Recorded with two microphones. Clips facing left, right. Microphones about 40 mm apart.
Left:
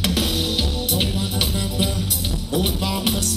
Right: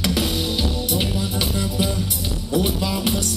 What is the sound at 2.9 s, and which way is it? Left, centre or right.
Music, centre.